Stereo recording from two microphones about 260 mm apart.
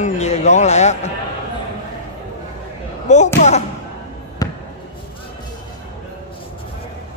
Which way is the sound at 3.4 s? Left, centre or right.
Left.